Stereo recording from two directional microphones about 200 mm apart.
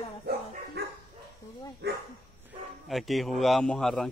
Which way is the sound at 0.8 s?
55° right (ahead or behind).